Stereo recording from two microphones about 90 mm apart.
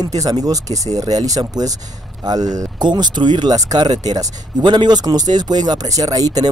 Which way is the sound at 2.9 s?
55° right (ahead or behind).